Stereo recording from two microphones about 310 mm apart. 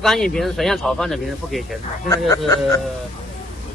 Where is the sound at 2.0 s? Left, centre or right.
Centre.